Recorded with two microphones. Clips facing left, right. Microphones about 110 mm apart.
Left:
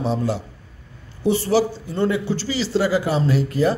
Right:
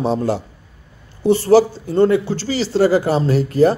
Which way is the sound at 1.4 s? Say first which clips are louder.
Right 7 dB; 40° right (ahead or behind).